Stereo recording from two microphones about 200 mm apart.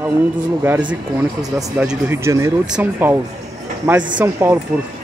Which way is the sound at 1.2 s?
15° right (ahead or behind).